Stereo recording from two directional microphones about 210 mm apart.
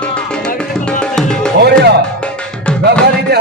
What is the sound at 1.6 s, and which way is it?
Music, 50° right (ahead or behind).